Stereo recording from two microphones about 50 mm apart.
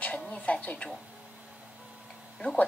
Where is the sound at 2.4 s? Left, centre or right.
Left.